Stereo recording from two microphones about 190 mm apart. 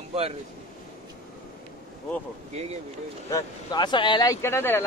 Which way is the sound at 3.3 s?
25° left (ahead or behind).